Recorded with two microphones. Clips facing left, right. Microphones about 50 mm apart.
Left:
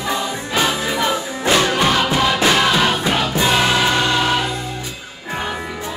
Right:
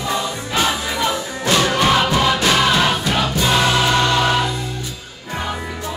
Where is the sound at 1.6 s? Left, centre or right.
Centre.